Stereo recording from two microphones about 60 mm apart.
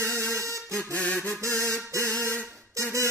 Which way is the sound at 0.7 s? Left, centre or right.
Left.